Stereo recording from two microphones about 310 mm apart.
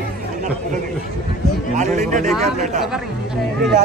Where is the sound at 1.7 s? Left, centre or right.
Right.